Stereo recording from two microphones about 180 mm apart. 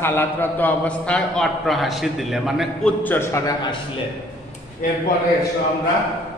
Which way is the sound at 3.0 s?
15° left (ahead or behind).